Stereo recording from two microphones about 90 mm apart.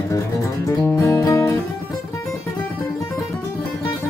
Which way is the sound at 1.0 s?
35° left (ahead or behind).